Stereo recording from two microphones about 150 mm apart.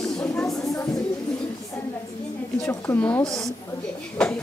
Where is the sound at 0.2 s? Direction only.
20° left (ahead or behind).